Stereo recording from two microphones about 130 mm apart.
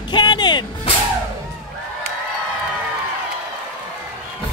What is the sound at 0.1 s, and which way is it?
Music, 35° left (ahead or behind).